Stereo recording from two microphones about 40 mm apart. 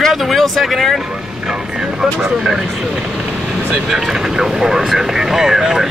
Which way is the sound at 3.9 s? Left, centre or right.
Centre.